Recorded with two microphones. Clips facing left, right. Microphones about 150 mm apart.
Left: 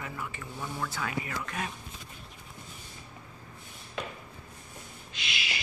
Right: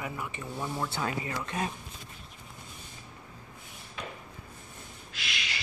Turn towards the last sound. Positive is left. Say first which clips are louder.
# left 1 dB
turn(degrees=0)  # may be behind; listen again after turning